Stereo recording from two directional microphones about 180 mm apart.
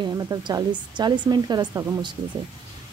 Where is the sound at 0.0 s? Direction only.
20° right (ahead or behind).